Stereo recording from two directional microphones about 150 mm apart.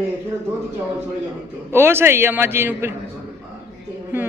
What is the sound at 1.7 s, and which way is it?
A man's voice, 15° right (ahead or behind).